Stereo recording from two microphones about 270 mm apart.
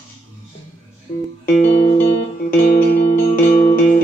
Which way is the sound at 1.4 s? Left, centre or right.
Left.